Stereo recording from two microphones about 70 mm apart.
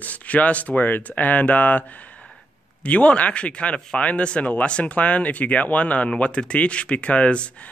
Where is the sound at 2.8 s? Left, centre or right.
Centre.